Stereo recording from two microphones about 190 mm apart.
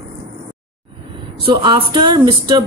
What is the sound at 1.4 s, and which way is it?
Speech, 25° right (ahead or behind).